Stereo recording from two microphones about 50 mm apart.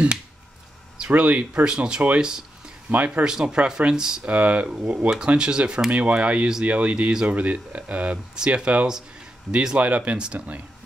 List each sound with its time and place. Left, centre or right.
0.9 s speech: right
2.9 s speech: right
3.3 s speech: centre
4.2 s speech: right
5.9 s speech: right